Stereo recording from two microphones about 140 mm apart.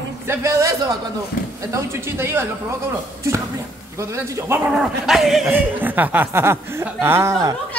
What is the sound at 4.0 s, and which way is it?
Speech, 20° right (ahead or behind).